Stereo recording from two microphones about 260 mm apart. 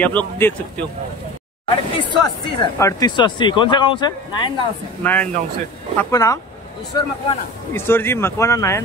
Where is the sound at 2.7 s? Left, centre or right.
Centre.